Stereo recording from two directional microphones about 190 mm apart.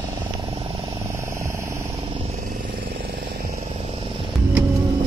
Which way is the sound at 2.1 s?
30° right (ahead or behind).